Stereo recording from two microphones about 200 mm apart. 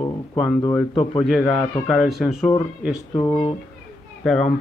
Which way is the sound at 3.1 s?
15° left (ahead or behind).